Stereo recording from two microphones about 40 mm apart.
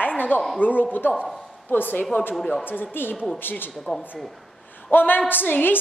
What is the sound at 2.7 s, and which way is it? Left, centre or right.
A woman's voice, left.